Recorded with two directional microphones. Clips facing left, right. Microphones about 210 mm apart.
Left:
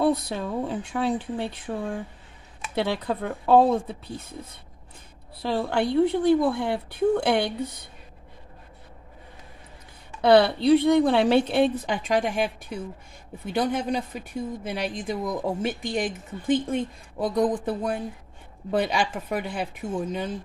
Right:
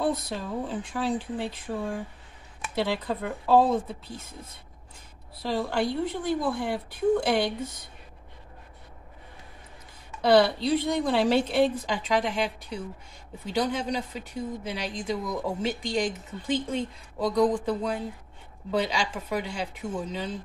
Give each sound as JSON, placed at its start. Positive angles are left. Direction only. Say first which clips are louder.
{"t": 0.0, "sound": "a woman's voice", "louder": "left 5 dB", "side_deg": 65}
{"t": 2.7, "sound": "a woman's voice", "louder": "left 2 dB", "side_deg": 60}
{"t": 5.4, "sound": "a woman's voice", "louder": "left 2 dB", "side_deg": 60}
{"t": 10.2, "sound": "a woman's voice", "louder": "left 3 dB", "side_deg": 60}